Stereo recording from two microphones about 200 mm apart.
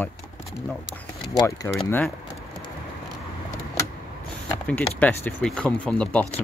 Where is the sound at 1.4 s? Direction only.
15° left (ahead or behind).